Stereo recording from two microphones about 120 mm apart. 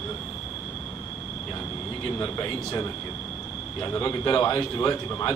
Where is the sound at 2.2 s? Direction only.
30° left (ahead or behind).